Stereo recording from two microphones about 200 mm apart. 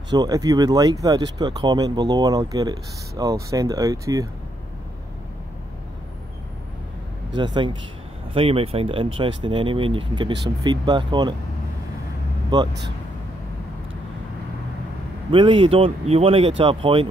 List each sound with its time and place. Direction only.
0.1 s speech: 20° right (ahead or behind)
7.3 s speech: 20° right (ahead or behind)
12.5 s speech: 20° right (ahead or behind)
15.3 s speech: 25° right (ahead or behind)